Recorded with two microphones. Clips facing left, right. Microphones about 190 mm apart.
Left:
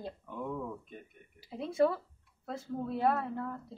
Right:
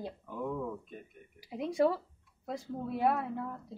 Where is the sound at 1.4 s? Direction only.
15° right (ahead or behind).